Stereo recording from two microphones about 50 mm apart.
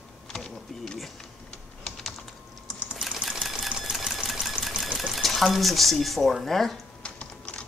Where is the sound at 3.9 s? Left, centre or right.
Centre.